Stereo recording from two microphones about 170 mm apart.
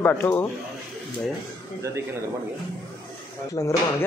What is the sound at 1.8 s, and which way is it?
Speech, 15° right (ahead or behind).